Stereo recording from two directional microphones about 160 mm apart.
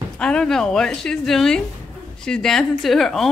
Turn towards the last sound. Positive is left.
turn(degrees=0)  # may be behind; listen again after turning